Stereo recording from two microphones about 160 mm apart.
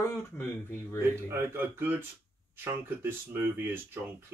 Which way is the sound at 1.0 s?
15° right (ahead or behind).